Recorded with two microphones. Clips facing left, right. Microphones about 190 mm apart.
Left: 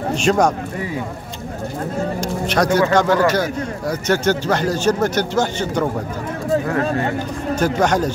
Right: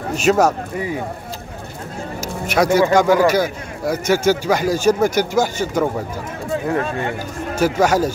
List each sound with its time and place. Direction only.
0.1 s speech: 5° right (ahead or behind)
2.4 s a man's voice: 10° right (ahead or behind)
6.8 s speech: 40° left (ahead or behind)
7.5 s a man's voice: 5° right (ahead or behind)